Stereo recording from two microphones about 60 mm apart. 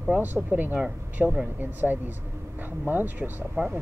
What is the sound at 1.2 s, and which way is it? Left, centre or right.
Speech, centre.